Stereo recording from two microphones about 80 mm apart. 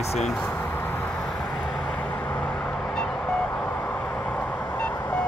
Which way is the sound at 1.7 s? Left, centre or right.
Centre.